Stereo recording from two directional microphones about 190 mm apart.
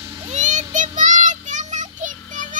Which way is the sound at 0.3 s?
40° right (ahead or behind).